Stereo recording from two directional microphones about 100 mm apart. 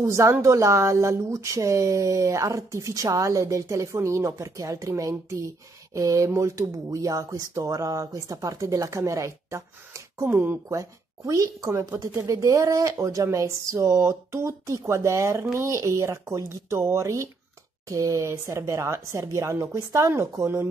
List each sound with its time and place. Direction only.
0.0 s speech: 30° right (ahead or behind)
10.7 s speech: 35° right (ahead or behind)